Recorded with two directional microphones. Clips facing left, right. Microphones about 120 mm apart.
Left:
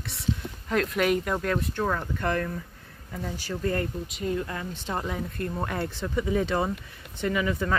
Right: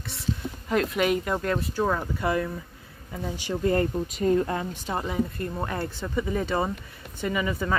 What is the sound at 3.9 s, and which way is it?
Speech, 45° right (ahead or behind).